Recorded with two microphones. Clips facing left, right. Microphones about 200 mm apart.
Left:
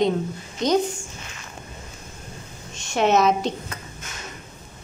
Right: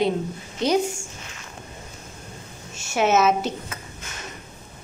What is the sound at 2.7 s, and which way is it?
A woman's voice, 5° right (ahead or behind).